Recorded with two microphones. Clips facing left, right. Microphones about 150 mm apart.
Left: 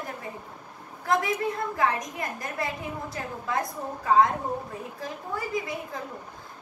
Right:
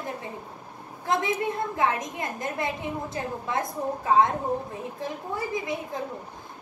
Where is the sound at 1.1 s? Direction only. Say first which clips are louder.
Even; 25° right (ahead or behind).